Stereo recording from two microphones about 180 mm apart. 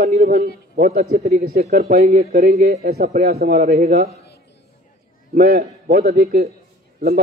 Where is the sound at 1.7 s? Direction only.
55° right (ahead or behind).